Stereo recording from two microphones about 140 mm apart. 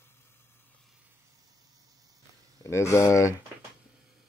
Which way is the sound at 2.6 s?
20° left (ahead or behind).